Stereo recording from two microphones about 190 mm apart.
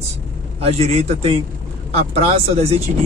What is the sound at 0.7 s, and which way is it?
Speech, 35° right (ahead or behind).